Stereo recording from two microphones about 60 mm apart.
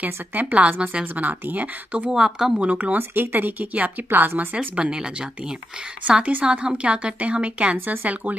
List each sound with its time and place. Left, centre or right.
0.0 s a woman's voice: right
2.0 s speech: centre
2.6 s a woman's voice: right
4.6 s speech: centre
6.4 s a woman's voice: centre